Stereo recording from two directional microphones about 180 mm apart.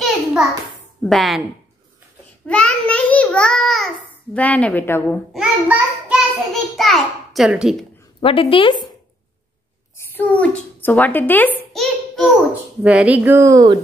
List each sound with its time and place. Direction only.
0.0 s a sound: centre (ahead or behind)
1.0 s a woman's voice: centre (ahead or behind)
2.4 s a child's voice: 5° left (ahead or behind)
5.0 s a sound: centre (ahead or behind)
6.8 s a child's voice: centre (ahead or behind)
8.2 s a woman's voice: 30° left (ahead or behind)
9.9 s a child's voice: 10° left (ahead or behind); by 13.8 s 20° right (ahead or behind)